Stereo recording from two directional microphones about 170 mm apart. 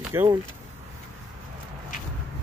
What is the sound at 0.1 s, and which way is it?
Speech, 15° right (ahead or behind).